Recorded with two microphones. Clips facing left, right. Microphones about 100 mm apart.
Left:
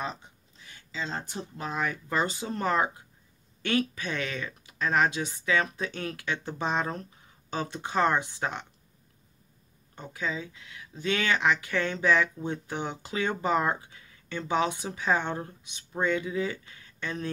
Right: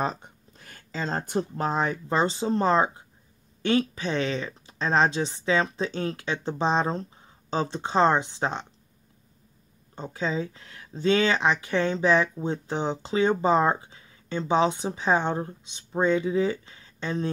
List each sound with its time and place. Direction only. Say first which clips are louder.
0.0 s speech: right 7 dB; 45° right (ahead or behind); by 8.6 s 20° right (ahead or behind)
9.9 s speech: right 5 dB; 25° right (ahead or behind)